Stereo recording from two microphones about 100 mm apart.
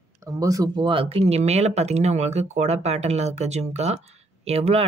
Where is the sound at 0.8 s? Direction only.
60° right (ahead or behind); by 4.8 s 90° right.